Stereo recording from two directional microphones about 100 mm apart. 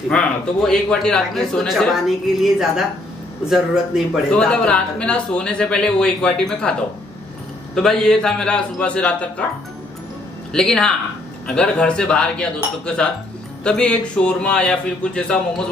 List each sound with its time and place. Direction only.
0.1 s a man's voice: 10° left (ahead or behind)
4.3 s a man's voice: 10° left (ahead or behind)
7.7 s a man's voice: 5° left (ahead or behind)
10.5 s a man's voice: 5° left (ahead or behind)